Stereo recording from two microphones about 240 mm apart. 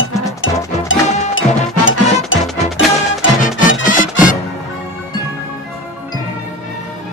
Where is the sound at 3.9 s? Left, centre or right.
Left.